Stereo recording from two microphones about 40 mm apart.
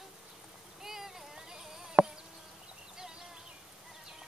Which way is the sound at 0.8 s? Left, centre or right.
Centre.